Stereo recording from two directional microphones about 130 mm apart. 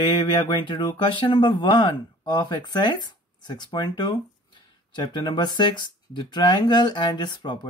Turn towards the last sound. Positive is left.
turn(degrees=35)  # may be behind; listen again after turning